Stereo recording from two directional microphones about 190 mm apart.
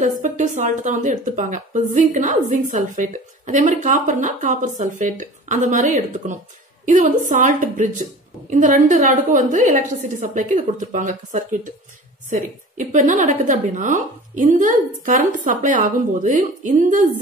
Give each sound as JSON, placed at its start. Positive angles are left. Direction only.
{"t": 0.2, "sound": "a woman's voice", "side_deg": -40}